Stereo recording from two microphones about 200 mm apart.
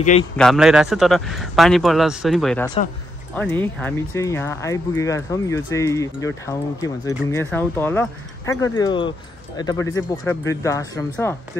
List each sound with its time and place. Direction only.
0.4 s a man's voice: centre (ahead or behind)